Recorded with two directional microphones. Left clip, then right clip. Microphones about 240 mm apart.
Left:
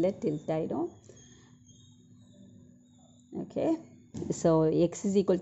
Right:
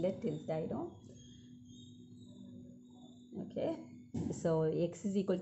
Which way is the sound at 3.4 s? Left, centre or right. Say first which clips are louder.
Left 8 dB; left.